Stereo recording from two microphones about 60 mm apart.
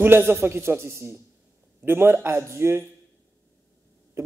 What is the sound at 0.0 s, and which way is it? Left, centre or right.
A man's voice, right.